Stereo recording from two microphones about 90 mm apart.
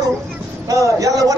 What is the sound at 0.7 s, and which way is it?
Speech, 40° right (ahead or behind).